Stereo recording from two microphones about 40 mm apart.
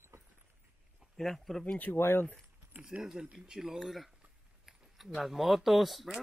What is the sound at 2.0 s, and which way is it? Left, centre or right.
Speech, left.